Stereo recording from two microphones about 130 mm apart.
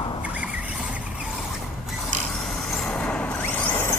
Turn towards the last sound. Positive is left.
turn(degrees=10)  # may be behind; listen again after turning